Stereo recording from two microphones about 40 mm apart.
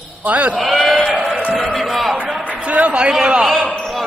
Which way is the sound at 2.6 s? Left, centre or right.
Right.